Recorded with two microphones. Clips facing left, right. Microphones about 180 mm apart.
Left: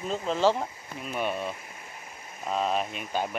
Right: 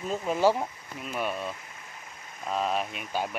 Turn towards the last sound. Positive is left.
turn(degrees=-5)  # may be behind; listen again after turning